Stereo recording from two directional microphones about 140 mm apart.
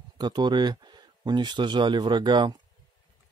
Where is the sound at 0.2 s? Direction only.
30° right (ahead or behind).